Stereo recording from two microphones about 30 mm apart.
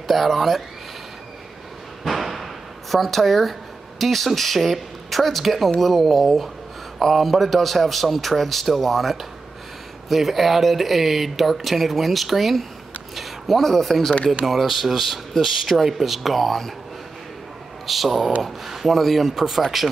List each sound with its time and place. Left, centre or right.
0.1 s speech: centre
2.0 s a sound: centre
4.0 s speech: centre
13.1 s a sound: centre
13.7 s speech: centre
15.3 s speech: centre
15.7 s speech: centre
17.8 s speech: centre